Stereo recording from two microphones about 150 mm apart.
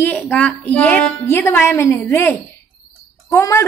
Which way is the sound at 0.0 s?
10° left (ahead or behind).